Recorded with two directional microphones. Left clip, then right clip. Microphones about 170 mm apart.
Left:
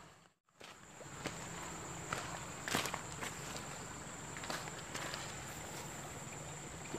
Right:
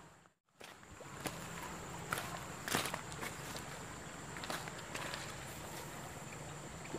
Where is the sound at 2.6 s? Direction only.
15° right (ahead or behind).